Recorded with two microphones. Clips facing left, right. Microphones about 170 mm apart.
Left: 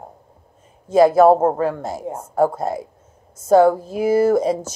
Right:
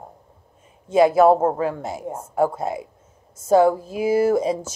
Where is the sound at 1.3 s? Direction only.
35° left (ahead or behind).